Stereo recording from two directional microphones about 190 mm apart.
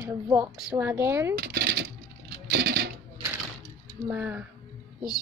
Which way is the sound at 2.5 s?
60° right (ahead or behind).